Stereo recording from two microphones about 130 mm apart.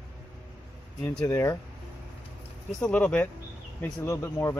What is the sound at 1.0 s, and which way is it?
Speech, 15° left (ahead or behind).